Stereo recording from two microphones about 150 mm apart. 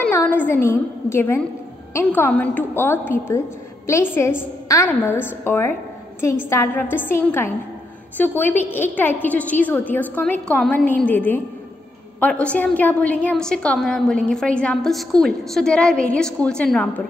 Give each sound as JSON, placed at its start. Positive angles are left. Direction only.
{"t": 0.1, "sound": "a woman's voice", "side_deg": 15}